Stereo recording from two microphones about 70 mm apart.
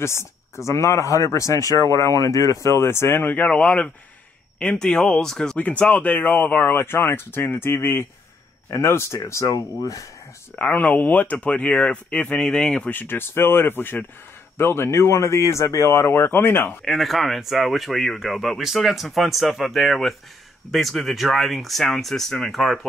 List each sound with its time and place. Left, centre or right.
0.0 s speech: left; by 5.6 s centre
5.6 s speech: centre; by 10.0 s left
10.5 s speech: left
12.9 s speech: left
16.8 s speech: centre